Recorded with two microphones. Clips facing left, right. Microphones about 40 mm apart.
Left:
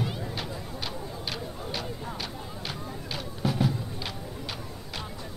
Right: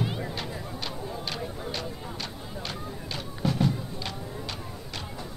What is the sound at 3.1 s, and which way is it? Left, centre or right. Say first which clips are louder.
Music: right 1 dB; centre.